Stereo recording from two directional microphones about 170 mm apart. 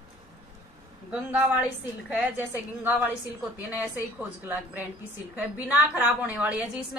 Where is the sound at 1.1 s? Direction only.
10° right (ahead or behind).